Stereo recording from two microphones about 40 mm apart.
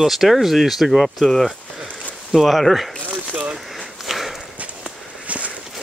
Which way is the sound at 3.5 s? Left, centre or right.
Centre.